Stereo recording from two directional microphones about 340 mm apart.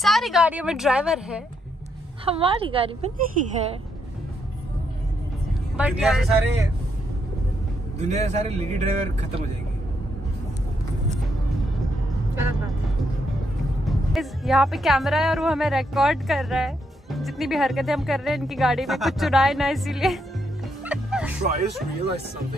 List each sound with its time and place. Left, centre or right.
0.0 s speech: centre
2.2 s a woman's voice: centre
5.8 s speech: centre
8.0 s speech: centre
13.8 s speech: centre
20.8 s music: centre